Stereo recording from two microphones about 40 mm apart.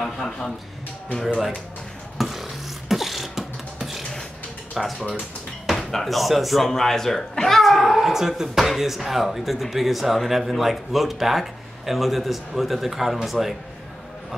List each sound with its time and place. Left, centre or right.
0.0 s a man's voice: centre
1.2 s speech: centre
2.1 s beatboxing: centre
4.7 s speech: centre
6.7 s speech: centre
7.6 s a sound: centre
8.5 s speech: centre